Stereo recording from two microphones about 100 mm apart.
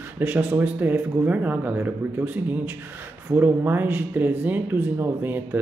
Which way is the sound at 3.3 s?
20° right (ahead or behind).